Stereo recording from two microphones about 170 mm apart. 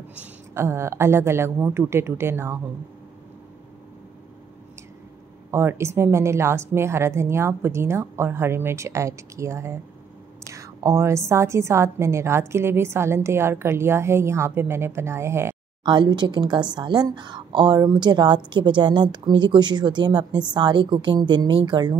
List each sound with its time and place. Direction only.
0.2 s a woman's voice: 15° right (ahead or behind)
5.5 s a woman's voice: 15° right (ahead or behind)
15.8 s a woman's voice: 25° right (ahead or behind)